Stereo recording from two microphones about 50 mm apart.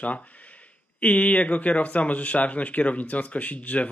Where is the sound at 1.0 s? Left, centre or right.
Left.